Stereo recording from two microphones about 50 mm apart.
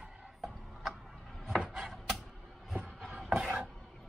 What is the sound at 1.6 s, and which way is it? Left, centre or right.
Chopping, centre.